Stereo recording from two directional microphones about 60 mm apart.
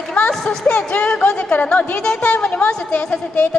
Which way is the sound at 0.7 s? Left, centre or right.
Left.